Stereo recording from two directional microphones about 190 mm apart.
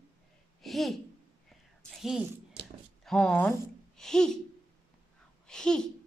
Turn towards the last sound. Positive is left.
turn(degrees=5)  # may be behind; listen again after turning